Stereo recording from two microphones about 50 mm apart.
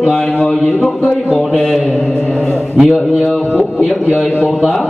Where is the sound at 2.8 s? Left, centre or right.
Centre.